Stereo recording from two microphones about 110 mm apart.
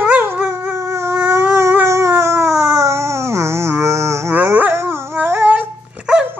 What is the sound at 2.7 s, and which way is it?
Livestock, 25° right (ahead or behind).